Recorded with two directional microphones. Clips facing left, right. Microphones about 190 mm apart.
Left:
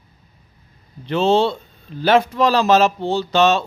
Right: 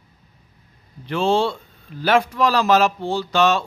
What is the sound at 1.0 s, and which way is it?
A man's voice, 20° left (ahead or behind).